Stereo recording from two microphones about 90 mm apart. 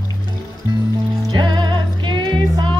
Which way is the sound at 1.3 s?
55° right (ahead or behind).